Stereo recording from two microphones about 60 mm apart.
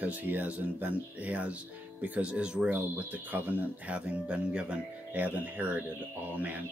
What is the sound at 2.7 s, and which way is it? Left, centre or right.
Speech, right.